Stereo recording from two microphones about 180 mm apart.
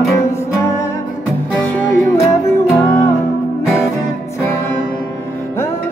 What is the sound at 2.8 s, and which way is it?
Music, 15° left (ahead or behind).